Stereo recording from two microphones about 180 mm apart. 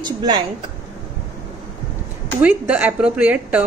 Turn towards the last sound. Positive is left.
turn(degrees=-10)  # may be behind; listen again after turning